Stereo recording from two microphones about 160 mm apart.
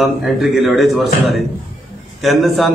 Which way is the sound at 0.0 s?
Centre (ahead or behind).